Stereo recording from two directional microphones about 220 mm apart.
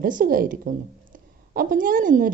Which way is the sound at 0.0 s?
40° right (ahead or behind).